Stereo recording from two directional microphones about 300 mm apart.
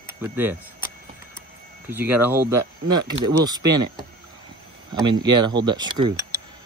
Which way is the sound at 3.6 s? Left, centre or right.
Right.